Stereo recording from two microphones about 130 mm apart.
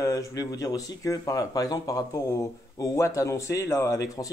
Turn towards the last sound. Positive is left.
turn(degrees=25)  # may be behind; listen again after turning